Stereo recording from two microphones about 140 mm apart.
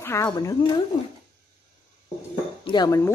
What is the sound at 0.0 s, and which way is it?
Speech, 20° left (ahead or behind).